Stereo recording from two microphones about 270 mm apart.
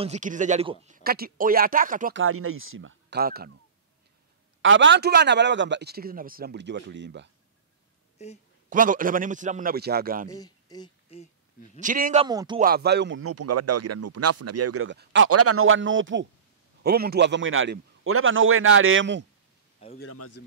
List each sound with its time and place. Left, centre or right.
0.0 s a man's voice: right
2.1 s a man's voice: right
4.6 s a man's voice: right
8.2 s a woman's voice: left
8.6 s a man's voice: right
10.3 s speech: centre
11.8 s a man's voice: right
12.3 s speech: centre
12.5 s a man's voice: right
13.2 s speech: right
15.2 s a man's voice: right
20.0 s speech: left